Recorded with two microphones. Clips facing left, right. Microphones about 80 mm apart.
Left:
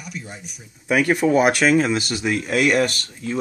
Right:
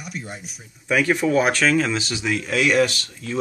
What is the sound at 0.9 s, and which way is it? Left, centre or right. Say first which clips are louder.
Speech: left 2 dB; centre.